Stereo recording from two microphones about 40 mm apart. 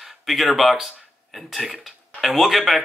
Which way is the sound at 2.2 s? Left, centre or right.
Centre.